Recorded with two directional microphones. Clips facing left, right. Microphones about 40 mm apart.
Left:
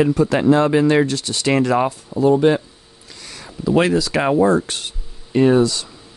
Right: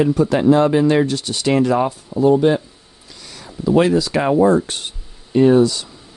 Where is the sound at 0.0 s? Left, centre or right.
Left.